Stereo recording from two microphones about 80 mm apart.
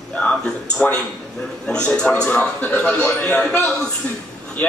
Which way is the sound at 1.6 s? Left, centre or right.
Centre.